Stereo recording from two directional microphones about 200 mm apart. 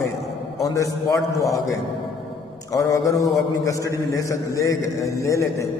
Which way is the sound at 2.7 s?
15° left (ahead or behind).